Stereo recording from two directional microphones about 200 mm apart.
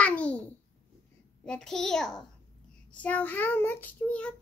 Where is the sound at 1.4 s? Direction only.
5° left (ahead or behind).